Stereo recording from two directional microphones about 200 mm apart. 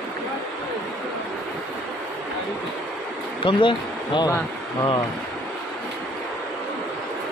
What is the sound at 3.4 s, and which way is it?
Speech, 25° left (ahead or behind).